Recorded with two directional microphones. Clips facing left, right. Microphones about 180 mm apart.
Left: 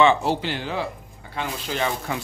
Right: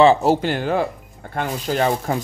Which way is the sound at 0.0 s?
40° right (ahead or behind).